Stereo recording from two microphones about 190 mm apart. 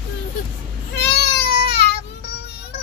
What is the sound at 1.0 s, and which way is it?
Baby cry, 60° left (ahead or behind).